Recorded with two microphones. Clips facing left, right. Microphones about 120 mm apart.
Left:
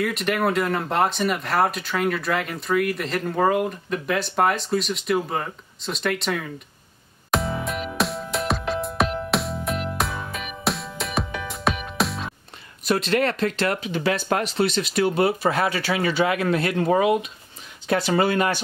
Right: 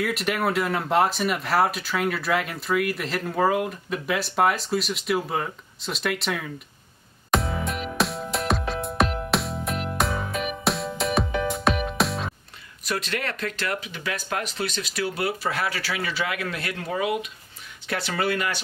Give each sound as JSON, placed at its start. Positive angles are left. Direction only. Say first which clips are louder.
{"t": 0.0, "sound": "speech", "louder": "left 2 dB", "side_deg": 0}
{"t": 7.2, "sound": "music", "louder": "left 1 dB", "side_deg": 0}
{"t": 12.8, "sound": "speech", "louder": "left 8 dB", "side_deg": 25}